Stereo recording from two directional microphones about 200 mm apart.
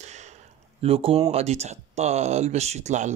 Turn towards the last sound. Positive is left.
turn(degrees=-35)  # may be behind; listen again after turning